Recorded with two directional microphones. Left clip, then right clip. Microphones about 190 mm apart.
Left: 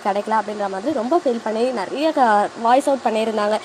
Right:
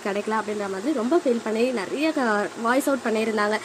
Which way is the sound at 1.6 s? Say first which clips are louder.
Left 4 dB; centre (ahead or behind).